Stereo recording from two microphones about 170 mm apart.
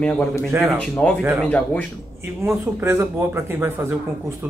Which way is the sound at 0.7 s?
5° left (ahead or behind).